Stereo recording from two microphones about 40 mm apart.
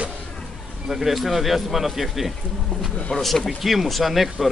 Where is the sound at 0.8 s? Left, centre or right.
Centre.